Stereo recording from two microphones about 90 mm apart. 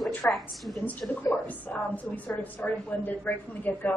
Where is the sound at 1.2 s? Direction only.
20° left (ahead or behind).